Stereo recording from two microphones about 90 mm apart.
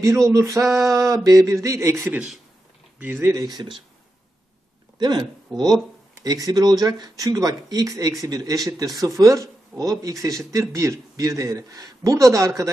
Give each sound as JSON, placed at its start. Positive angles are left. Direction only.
{"t": 0.0, "sound": "speech", "side_deg": -35}
{"t": 3.0, "sound": "speech", "side_deg": -20}
{"t": 3.3, "sound": "speech", "side_deg": -45}
{"t": 4.9, "sound": "speech", "side_deg": -50}
{"t": 5.5, "sound": "speech", "side_deg": 5}
{"t": 6.2, "sound": "speech", "side_deg": -45}